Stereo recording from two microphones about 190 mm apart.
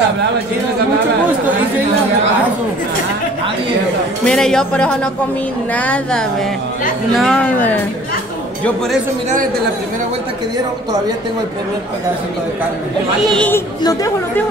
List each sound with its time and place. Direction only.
4.2 s speech: 5° left (ahead or behind)
13.3 s speech: 5° left (ahead or behind)
13.8 s speech: 20° left (ahead or behind)